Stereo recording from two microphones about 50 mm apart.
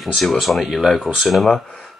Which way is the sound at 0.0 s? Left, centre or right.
Centre.